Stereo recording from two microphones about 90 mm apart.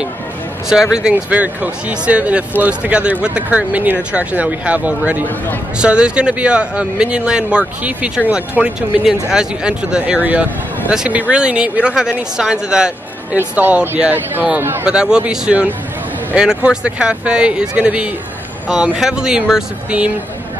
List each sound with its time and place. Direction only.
0.9 s speech: 10° right (ahead or behind)
14.9 s speech: 10° right (ahead or behind)